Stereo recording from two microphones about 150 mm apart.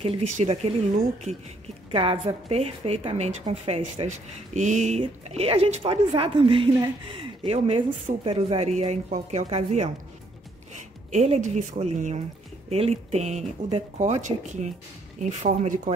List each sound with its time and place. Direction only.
0.0 s a woman's voice: 45° right (ahead or behind)
1.9 s speech: 35° right (ahead or behind)
5.0 s a woman's voice: 40° right (ahead or behind)
11.1 s speech: 50° right (ahead or behind)